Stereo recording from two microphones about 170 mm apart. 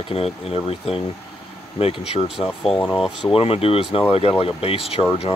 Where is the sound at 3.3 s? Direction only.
35° left (ahead or behind).